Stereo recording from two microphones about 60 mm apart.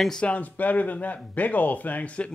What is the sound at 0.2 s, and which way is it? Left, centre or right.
Speech, left.